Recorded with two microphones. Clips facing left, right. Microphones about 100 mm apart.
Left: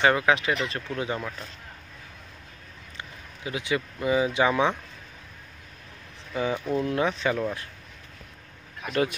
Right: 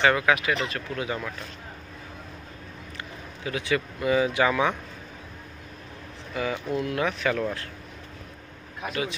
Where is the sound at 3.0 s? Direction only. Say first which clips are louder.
Right 1 dB; 20° left (ahead or behind).